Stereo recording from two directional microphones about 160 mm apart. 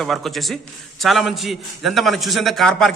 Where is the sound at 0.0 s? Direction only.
Centre (ahead or behind).